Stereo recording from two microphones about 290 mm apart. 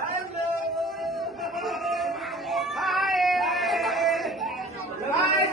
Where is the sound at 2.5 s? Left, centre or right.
Centre.